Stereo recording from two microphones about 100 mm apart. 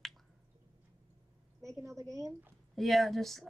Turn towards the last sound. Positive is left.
turn(degrees=0)  # may be behind; listen again after turning